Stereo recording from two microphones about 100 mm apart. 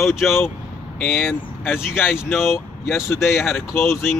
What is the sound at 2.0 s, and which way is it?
Speech, 5° right (ahead or behind).